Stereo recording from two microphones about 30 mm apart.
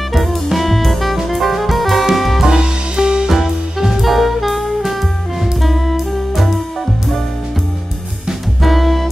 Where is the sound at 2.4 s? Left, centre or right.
Right.